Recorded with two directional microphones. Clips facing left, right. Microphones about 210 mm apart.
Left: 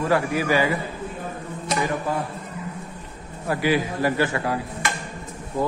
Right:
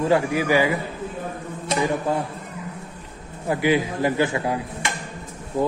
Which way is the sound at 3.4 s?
20° right (ahead or behind).